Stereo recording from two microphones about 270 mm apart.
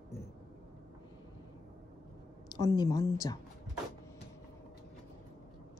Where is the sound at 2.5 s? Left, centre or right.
Centre.